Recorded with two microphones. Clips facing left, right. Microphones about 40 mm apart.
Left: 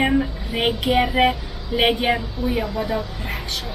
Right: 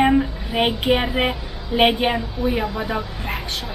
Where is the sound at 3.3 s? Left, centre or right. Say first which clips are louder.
Right 3 dB; right.